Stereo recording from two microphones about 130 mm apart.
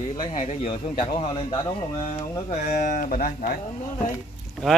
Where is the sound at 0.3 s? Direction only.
70° left (ahead or behind).